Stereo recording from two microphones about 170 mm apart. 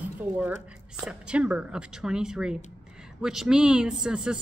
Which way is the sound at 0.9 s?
5° right (ahead or behind).